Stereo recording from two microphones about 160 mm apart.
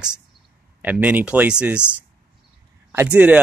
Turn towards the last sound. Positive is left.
turn(degrees=-10)  # may be behind; listen again after turning